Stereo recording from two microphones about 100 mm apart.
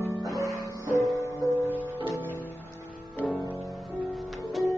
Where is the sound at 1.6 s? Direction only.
20° right (ahead or behind).